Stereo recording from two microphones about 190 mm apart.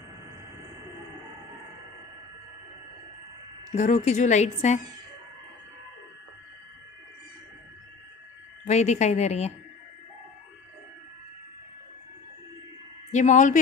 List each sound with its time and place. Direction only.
3.7 s a woman's voice: 40° left (ahead or behind)
8.6 s a woman's voice: 35° left (ahead or behind)
13.1 s a woman's voice: 40° left (ahead or behind)